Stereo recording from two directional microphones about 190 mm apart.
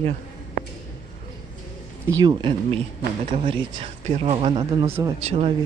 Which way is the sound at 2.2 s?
25° right (ahead or behind).